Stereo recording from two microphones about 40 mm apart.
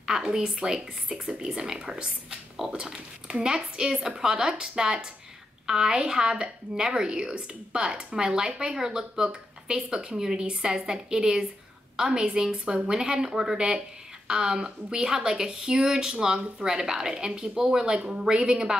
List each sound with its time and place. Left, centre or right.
0.0 s speech: centre